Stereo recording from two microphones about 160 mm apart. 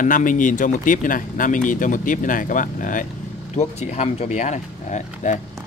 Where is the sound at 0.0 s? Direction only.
55° left (ahead or behind).